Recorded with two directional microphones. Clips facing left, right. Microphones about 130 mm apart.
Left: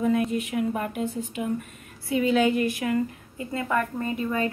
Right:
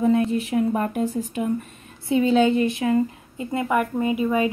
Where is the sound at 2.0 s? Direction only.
30° right (ahead or behind).